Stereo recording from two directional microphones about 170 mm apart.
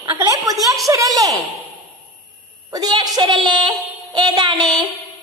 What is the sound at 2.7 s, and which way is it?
A child's voice, 25° right (ahead or behind).